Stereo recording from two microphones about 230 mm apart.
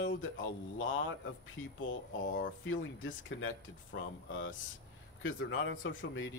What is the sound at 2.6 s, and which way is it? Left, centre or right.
Speech, left.